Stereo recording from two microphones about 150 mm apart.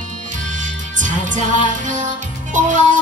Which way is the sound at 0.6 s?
55° right (ahead or behind).